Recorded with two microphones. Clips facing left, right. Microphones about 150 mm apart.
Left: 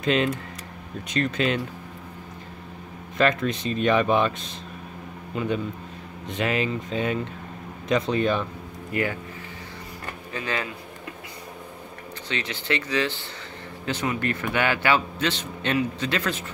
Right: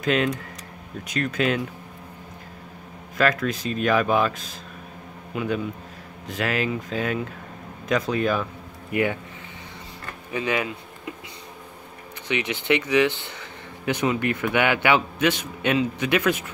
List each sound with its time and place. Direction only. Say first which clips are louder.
0.0 s speech: even; centre (ahead or behind)
3.2 s a man's voice: even; 5° right (ahead or behind)
8.9 s speech: right 3 dB; 20° right (ahead or behind)
10.3 s a sound: right 5 dB; 15° right (ahead or behind)
12.3 s a man's voice: right 5 dB; 15° right (ahead or behind)